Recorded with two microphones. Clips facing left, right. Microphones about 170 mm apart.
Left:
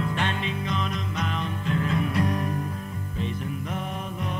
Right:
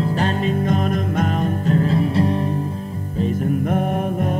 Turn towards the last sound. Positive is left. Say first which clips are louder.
# right 12 dB
turn(degrees=-50)  # may be behind; listen again after turning